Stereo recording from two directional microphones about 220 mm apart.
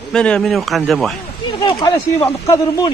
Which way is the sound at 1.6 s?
20° left (ahead or behind).